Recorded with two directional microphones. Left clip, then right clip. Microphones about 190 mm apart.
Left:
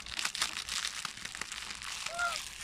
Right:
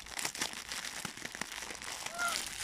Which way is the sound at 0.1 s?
35° right (ahead or behind).